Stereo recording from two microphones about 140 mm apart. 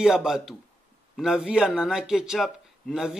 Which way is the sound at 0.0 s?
5° right (ahead or behind).